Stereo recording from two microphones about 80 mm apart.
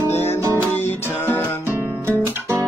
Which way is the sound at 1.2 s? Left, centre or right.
Left.